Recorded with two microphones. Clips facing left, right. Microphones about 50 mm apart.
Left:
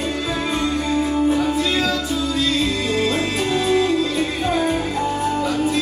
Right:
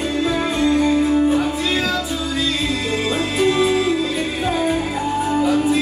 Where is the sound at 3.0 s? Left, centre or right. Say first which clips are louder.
Right 3 dB; centre.